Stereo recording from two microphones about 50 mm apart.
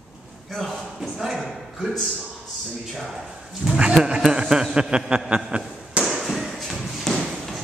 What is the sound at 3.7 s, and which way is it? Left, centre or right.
Speech, centre.